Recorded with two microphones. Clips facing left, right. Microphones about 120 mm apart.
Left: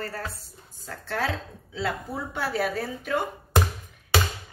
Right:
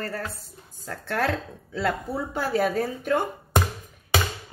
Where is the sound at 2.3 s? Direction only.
45° right (ahead or behind).